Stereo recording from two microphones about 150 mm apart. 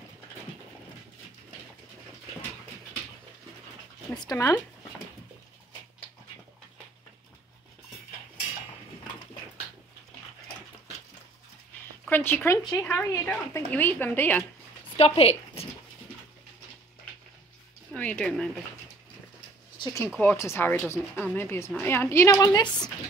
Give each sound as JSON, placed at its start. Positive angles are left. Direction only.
{"t": 4.3, "sound": "speech", "side_deg": 20}
{"t": 12.1, "sound": "speech", "side_deg": 15}
{"t": 15.0, "sound": "speech", "side_deg": 40}
{"t": 17.9, "sound": "speech", "side_deg": 10}
{"t": 19.8, "sound": "speech", "side_deg": 20}